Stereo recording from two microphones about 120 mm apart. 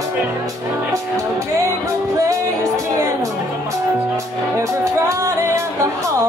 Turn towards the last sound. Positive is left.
turn(degrees=-25)  # may be behind; listen again after turning